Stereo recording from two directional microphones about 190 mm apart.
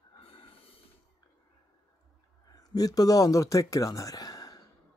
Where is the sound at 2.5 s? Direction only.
20° left (ahead or behind).